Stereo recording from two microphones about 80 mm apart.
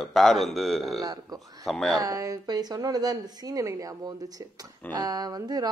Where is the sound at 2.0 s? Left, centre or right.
Right.